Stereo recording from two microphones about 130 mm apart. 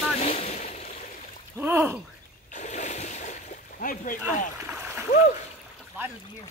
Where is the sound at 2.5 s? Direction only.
65° left (ahead or behind); by 4.2 s 90° left.